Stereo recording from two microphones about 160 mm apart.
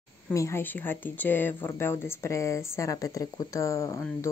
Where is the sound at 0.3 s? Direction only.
20° left (ahead or behind).